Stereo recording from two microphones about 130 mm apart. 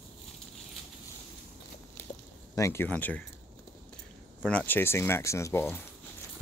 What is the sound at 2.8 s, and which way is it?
Speech, 10° left (ahead or behind).